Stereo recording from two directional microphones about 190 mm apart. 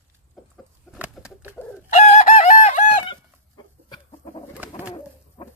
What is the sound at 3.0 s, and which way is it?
Chicken, 25° left (ahead or behind).